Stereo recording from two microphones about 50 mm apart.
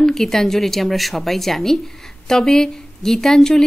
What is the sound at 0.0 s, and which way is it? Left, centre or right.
A woman's voice, centre.